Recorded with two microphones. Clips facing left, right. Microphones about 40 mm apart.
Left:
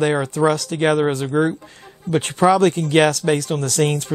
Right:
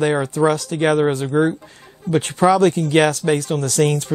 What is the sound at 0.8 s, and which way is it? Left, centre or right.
Speech, left.